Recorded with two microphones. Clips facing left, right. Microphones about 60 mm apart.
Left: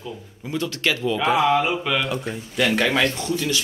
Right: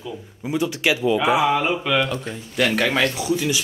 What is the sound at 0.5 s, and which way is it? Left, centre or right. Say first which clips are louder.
Speech: right 3 dB; centre.